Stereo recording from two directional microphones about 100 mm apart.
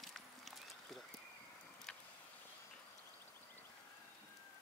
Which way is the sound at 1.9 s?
5° left (ahead or behind).